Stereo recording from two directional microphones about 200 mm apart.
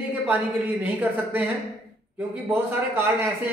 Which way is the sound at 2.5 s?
10° right (ahead or behind).